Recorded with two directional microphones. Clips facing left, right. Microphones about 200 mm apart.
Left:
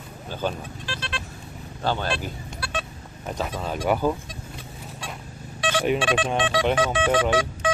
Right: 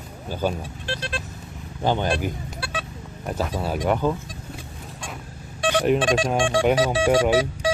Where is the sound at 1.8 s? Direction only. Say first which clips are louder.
Right 4 dB; 15° right (ahead or behind).